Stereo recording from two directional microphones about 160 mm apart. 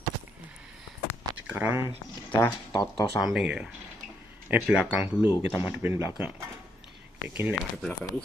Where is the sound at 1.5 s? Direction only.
10° right (ahead or behind).